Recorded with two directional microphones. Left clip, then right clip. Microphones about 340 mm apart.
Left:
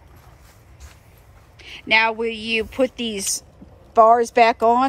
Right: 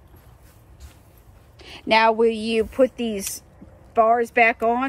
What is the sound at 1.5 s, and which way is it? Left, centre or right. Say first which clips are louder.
Speech: left 1 dB; centre.